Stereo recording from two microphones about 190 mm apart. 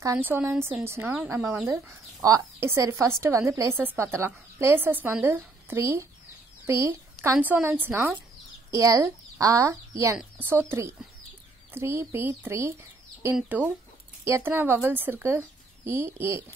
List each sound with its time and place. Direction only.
0.0 s speech: 15° right (ahead or behind)